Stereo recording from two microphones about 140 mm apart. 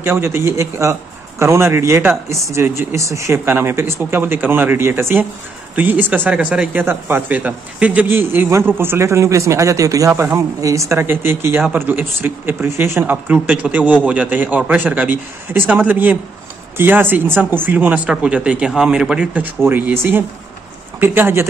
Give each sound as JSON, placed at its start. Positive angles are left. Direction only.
{"t": 0.0, "sound": "a man's voice", "side_deg": -15}